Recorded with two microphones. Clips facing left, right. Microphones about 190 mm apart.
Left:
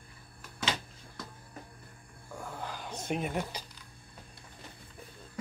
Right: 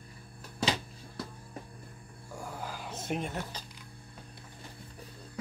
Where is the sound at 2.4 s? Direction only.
5° right (ahead or behind).